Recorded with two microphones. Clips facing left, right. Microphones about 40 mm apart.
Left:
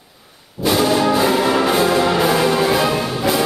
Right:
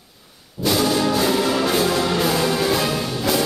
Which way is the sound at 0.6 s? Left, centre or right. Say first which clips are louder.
Left 4 dB; centre.